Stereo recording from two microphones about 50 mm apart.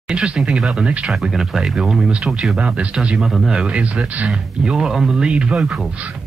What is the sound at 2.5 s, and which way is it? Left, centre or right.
Speech, right.